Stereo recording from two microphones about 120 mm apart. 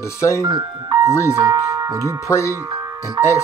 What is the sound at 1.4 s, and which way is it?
Tubular bells, 25° right (ahead or behind).